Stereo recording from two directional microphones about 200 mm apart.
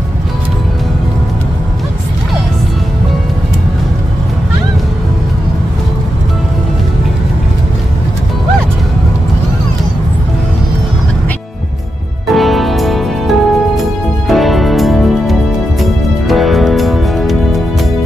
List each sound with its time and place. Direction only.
12.3 s music: centre (ahead or behind)